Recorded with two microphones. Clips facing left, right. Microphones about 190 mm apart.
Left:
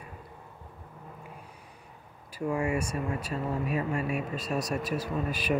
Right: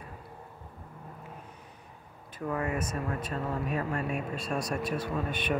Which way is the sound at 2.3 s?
10° left (ahead or behind).